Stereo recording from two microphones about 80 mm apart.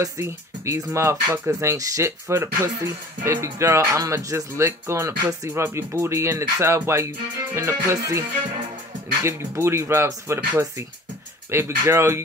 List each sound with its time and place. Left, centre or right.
0.0 s speech: right
9.2 s speech: right
11.5 s speech: right